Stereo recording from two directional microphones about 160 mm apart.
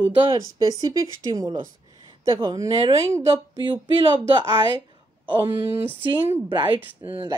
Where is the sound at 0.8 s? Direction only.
25° right (ahead or behind).